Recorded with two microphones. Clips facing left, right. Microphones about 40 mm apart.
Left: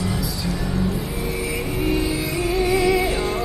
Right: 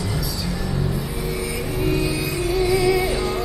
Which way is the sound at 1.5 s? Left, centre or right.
Left.